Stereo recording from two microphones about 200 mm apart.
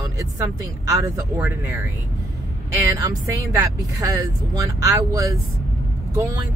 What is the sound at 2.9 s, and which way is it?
Speech, 15° right (ahead or behind).